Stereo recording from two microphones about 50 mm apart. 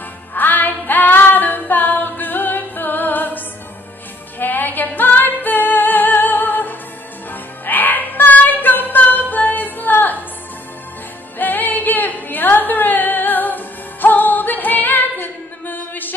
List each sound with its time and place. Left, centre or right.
0.3 s music: left
4.4 s female singing: left
7.2 s music: left
11.3 s music: left